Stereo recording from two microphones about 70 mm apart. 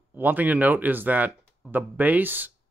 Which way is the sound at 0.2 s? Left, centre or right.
Right.